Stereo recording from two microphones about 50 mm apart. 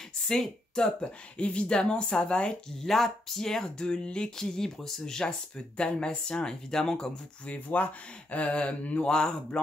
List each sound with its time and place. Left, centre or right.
0.3 s speech: centre
2.8 s speech: centre
7.4 s speech: left